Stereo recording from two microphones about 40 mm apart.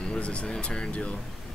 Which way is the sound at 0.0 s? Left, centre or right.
Left.